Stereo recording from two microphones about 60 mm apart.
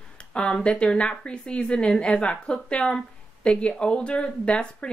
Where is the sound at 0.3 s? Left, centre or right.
Centre.